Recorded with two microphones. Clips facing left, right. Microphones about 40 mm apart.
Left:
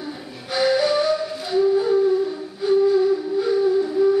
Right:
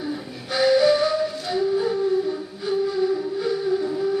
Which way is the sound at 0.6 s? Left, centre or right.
Centre.